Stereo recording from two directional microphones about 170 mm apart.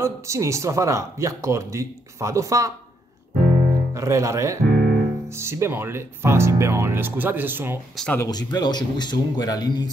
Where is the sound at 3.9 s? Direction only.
20° right (ahead or behind).